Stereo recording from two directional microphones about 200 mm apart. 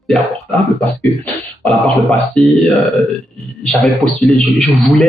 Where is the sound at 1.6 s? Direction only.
5° left (ahead or behind).